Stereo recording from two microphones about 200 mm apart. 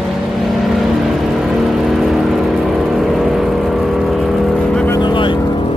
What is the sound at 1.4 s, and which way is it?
Vehicle, centre (ahead or behind).